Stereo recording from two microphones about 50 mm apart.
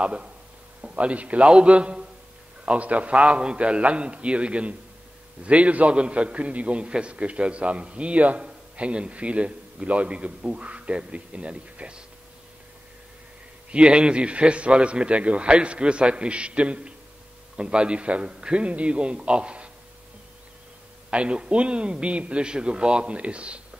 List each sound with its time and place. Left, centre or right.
0.0 s a man's voice: right
13.7 s a man's voice: right
21.1 s a man's voice: right